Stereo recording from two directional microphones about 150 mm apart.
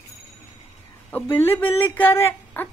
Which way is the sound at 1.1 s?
10° left (ahead or behind).